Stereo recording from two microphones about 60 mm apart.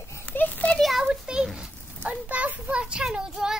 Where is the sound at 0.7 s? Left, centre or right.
Centre.